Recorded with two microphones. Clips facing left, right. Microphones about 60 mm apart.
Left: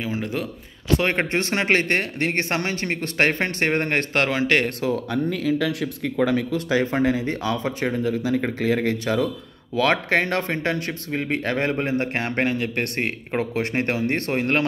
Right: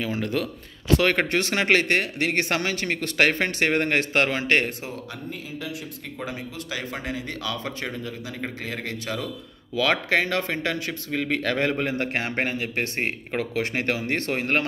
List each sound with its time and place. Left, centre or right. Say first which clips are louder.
0.0 s speech: even; centre; by 4.0 s left
4.1 s speech: left 4 dB; left
5.3 s speech: left 9 dB; left
6.1 s speech: left 13 dB; left
6.7 s speech: left 11 dB; left
12.4 s speech: left 3 dB; left
13.4 s speech: left 3 dB; left
14.4 s speech: left 4 dB; left